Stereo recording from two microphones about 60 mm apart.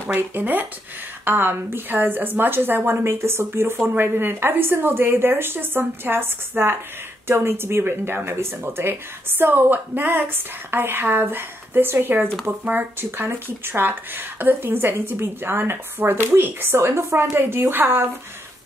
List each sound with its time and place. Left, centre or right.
0.1 s speech: right